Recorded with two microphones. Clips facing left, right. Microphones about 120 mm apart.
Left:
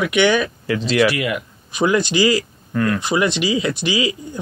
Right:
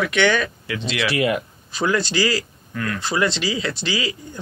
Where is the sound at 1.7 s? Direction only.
15° left (ahead or behind).